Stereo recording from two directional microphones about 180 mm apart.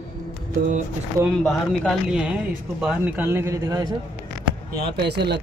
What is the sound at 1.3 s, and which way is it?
Speech, 5° left (ahead or behind).